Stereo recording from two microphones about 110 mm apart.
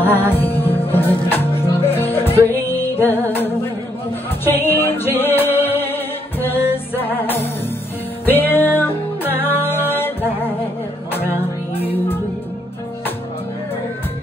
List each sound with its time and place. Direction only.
0.0 s music: 20° left (ahead or behind)
0.9 s speech: 20° left (ahead or behind)
1.6 s music: 20° left (ahead or behind)
9.4 s a capella: 20° left (ahead or behind)
11.1 s music: 20° left (ahead or behind)